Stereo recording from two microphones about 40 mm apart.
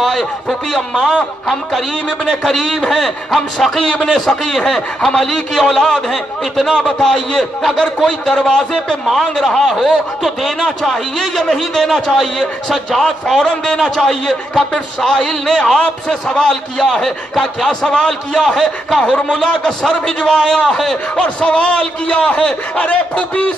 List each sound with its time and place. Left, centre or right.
0.0 s a man's voice: centre
2.2 s a man's voice: centre
9.1 s a man's voice: centre
13.4 s a man's voice: centre
17.6 s a man's voice: centre